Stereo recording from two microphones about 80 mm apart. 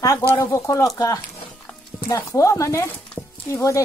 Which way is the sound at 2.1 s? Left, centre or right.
Left.